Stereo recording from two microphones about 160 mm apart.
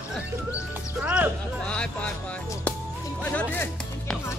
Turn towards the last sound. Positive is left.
turn(degrees=10)  # may be behind; listen again after turning